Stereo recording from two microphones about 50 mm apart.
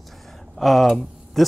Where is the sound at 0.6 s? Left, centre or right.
Centre.